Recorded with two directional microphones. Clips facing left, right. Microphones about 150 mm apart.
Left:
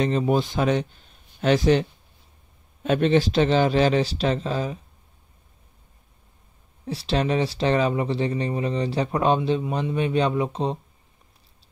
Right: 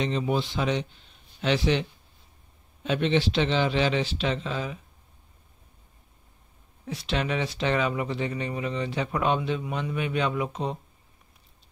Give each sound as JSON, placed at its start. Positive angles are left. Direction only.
{"t": 0.0, "sound": "a man's voice", "side_deg": 45}
{"t": 6.9, "sound": "speech", "side_deg": 35}